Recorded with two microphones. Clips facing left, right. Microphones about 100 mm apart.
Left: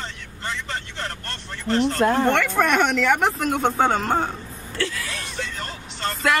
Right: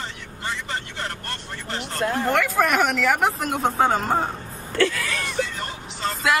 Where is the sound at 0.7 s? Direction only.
10° right (ahead or behind).